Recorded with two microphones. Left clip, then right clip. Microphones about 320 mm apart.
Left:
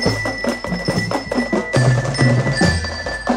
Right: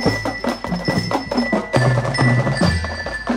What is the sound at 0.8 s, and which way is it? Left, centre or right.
Music, right.